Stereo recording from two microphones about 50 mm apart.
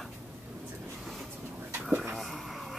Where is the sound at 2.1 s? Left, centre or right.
Centre.